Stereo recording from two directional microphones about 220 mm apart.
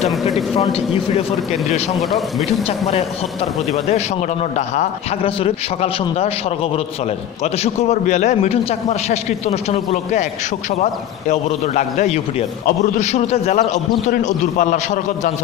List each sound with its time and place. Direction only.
0.6 s a man's voice: 25° left (ahead or behind)
2.0 s a man's voice: centre (ahead or behind)
4.6 s a man's voice: 30° left (ahead or behind)
7.6 s a man's voice: 30° left (ahead or behind)